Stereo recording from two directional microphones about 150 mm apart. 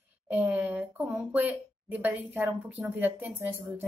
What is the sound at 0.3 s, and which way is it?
Speech, 10° right (ahead or behind).